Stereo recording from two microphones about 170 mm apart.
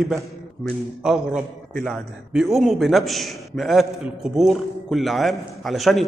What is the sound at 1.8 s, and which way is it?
A man's voice, 5° right (ahead or behind).